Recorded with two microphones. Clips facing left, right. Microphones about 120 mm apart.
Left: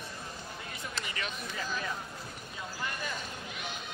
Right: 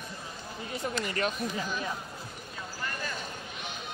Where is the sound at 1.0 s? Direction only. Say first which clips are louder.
Right 8 dB; 45° right (ahead or behind).